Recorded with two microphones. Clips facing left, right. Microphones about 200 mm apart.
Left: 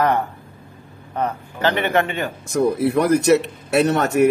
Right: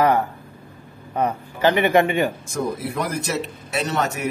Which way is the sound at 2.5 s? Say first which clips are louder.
Left 8 dB; 65° left (ahead or behind).